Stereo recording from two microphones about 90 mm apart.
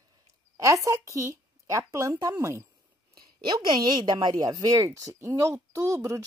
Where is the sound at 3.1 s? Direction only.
60° right (ahead or behind).